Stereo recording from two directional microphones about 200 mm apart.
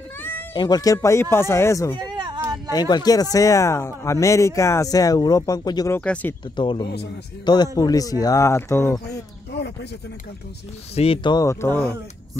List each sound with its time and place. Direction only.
0.2 s cat: 10° left (ahead or behind)
0.6 s speech: 20° left (ahead or behind)
2.0 s a sound: 20° right (ahead or behind)
2.7 s speech: 20° left (ahead or behind)
5.9 s speech: 5° left (ahead or behind)
6.5 s speech: 25° left (ahead or behind)
11.0 s speech: 25° left (ahead or behind)